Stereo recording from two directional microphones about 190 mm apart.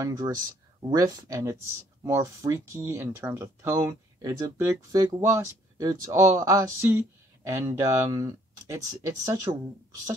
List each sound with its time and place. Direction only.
0.0 s speech: 20° right (ahead or behind)